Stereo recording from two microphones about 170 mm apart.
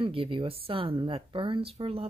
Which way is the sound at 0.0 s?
30° right (ahead or behind).